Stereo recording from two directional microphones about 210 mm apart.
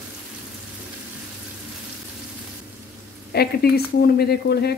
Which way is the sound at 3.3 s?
50° left (ahead or behind).